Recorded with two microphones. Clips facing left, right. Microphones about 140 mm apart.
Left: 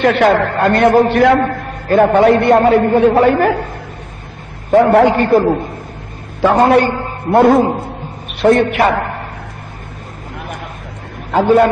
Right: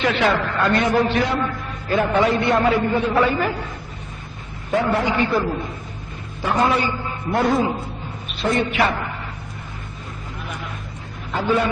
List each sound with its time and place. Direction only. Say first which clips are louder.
0.0 s a man's voice: left 8 dB; 55° left (ahead or behind)
4.7 s a man's voice: left 11 dB; 60° left (ahead or behind)
10.4 s vehicle: left 5 dB; 55° left (ahead or behind)